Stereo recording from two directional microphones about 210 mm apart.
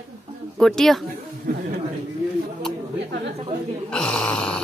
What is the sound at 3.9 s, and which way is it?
Speech, 5° left (ahead or behind).